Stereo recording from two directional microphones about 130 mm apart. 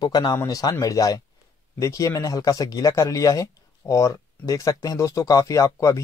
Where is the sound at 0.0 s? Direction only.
30° left (ahead or behind).